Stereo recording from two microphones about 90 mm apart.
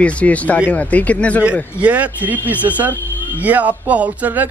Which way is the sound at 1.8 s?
15° right (ahead or behind).